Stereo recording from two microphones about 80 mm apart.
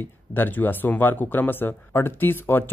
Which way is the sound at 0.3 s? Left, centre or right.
Left.